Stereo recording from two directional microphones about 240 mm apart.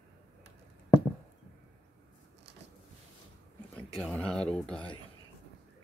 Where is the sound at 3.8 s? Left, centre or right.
Centre.